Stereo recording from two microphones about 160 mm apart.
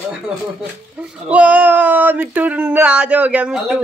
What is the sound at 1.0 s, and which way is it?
Speech, 10° right (ahead or behind).